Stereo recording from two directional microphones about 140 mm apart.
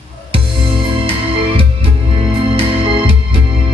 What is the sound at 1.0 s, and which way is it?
Music, 40° right (ahead or behind).